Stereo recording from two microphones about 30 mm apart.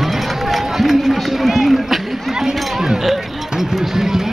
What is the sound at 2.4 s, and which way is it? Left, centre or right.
Run, right.